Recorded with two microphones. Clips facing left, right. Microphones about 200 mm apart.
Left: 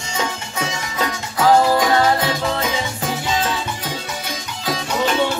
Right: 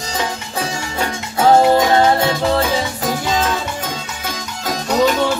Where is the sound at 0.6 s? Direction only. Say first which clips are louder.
Right 2 dB; 30° right (ahead or behind).